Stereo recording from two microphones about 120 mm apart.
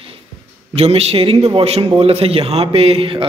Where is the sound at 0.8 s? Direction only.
60° right (ahead or behind).